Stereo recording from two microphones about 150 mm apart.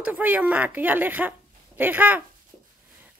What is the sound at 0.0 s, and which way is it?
Speech, 10° right (ahead or behind).